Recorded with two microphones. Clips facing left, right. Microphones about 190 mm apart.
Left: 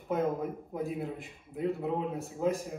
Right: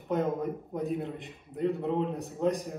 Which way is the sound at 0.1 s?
Centre (ahead or behind).